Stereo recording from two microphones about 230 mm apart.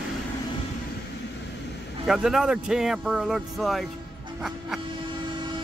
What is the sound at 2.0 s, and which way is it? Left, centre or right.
Speech, centre.